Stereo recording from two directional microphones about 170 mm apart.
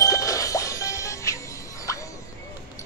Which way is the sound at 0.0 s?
20° left (ahead or behind).